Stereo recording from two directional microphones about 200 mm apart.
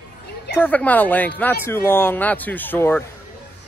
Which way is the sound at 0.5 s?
10° left (ahead or behind).